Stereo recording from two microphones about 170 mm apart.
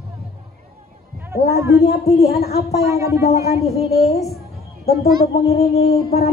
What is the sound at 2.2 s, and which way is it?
Speech, 65° left (ahead or behind).